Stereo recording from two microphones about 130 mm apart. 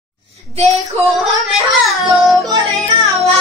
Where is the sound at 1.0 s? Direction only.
Centre (ahead or behind).